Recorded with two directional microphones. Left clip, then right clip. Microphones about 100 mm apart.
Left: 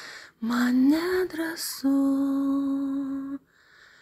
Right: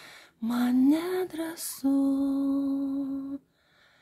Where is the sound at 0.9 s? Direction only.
5° left (ahead or behind).